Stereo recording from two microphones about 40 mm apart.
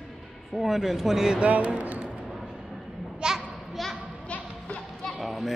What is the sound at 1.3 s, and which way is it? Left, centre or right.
Speech, right.